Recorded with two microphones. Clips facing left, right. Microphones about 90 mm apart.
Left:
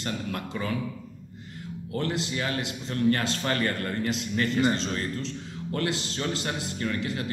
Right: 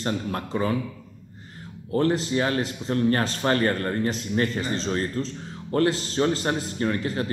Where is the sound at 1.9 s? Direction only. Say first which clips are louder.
Right 7 dB; 35° right (ahead or behind).